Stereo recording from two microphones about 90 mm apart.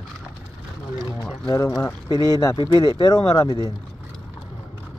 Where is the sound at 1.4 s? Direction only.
35° left (ahead or behind).